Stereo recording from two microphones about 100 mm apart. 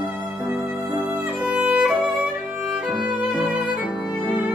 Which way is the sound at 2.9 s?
15° right (ahead or behind).